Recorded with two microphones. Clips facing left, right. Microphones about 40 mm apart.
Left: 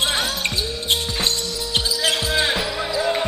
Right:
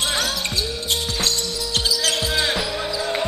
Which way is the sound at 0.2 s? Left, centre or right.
Left.